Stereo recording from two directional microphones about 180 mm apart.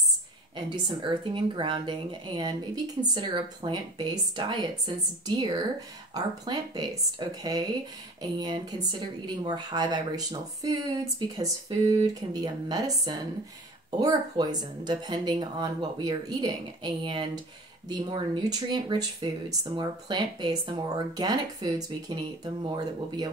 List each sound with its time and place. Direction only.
0.6 s speech: 25° right (ahead or behind)